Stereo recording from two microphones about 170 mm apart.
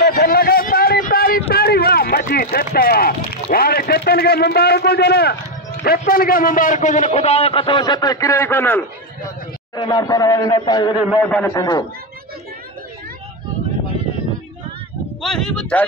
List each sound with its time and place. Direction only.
0.0 s a sound: 65° left (ahead or behind)
5.9 s a man's voice: 60° left (ahead or behind); by 8.8 s 10° left (ahead or behind)
9.8 s a man's voice: 20° left (ahead or behind)
11.2 s a man's voice: 5° left (ahead or behind)
11.5 s a man's voice: 20° left (ahead or behind)
15.2 s speech: 5° left (ahead or behind)